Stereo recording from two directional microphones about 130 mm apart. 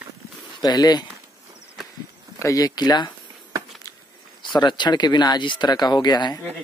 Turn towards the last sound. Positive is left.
turn(degrees=30)  # may be behind; listen again after turning